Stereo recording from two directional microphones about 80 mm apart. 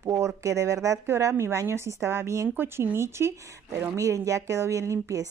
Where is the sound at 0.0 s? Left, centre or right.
Right.